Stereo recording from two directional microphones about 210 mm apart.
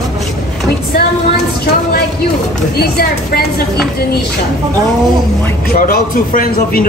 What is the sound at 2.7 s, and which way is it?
Speech, 50° left (ahead or behind).